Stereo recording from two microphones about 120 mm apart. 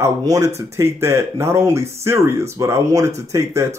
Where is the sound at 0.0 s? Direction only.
25° right (ahead or behind).